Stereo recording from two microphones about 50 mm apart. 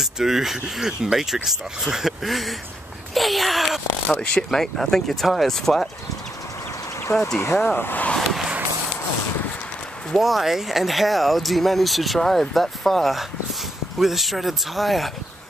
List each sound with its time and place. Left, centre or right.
0.0 s speech: centre
3.2 s a sound: centre
4.2 s speech: centre
7.1 s speech: left
7.6 s speech: left
8.2 s a sound: centre
10.1 s speech: centre